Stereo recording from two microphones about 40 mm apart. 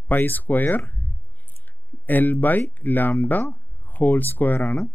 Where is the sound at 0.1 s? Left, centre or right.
Left.